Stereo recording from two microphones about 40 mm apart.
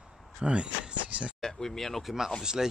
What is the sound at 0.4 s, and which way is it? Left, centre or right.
Speech, right.